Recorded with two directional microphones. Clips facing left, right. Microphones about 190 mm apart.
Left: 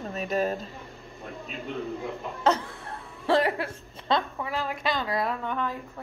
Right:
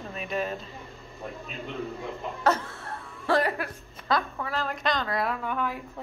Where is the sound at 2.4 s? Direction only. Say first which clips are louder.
Left 1 dB; 15° left (ahead or behind).